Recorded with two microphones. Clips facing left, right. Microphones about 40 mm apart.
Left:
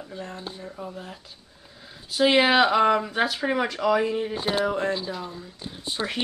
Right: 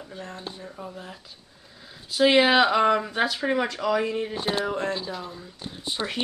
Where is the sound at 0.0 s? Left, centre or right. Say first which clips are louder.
Left 1 dB; centre.